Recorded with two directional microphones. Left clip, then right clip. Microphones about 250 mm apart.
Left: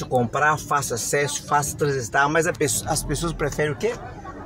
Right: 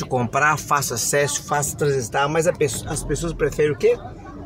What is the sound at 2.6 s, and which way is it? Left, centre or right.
Speech, left.